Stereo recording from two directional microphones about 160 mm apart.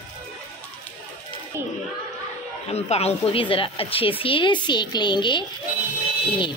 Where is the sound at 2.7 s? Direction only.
40° left (ahead or behind).